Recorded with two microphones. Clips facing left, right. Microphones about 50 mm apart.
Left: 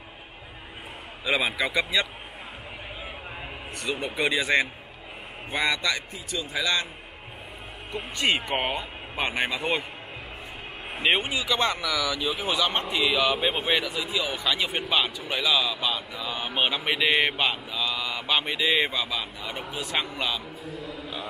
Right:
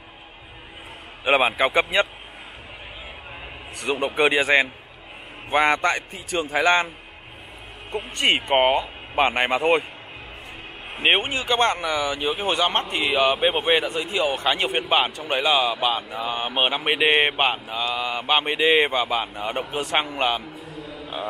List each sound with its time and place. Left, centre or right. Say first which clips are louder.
1.2 s speech: right 6 dB; right
3.8 s speech: right 7 dB; right
7.9 s speech: right 4 dB; right
11.0 s speech: right 3 dB; right
16.5 s speech: right 3 dB; right
17.4 s speech: right 4 dB; right